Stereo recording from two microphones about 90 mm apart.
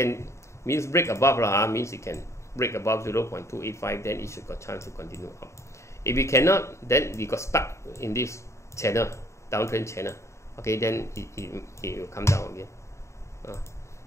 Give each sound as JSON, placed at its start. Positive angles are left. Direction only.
{"t": 0.0, "sound": "speech", "side_deg": 30}